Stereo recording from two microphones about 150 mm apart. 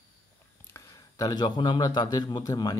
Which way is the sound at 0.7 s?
25° left (ahead or behind).